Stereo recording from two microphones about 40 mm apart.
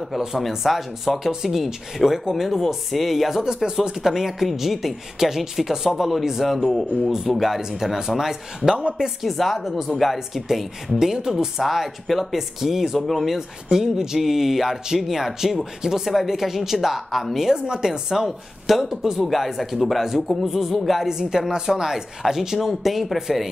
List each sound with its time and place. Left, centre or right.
0.1 s speech: centre
3.4 s speech: centre
3.9 s speech: centre
8.7 s speech: right
9.0 s speech: centre
11.6 s speech: centre
13.7 s speech: centre
17.5 s speech: centre
19.1 s speech: centre
21.1 s speech: centre